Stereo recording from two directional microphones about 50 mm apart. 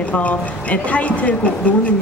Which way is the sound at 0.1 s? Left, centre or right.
Left.